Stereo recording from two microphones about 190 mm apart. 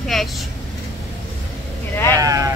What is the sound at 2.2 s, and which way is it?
Speech, 20° right (ahead or behind).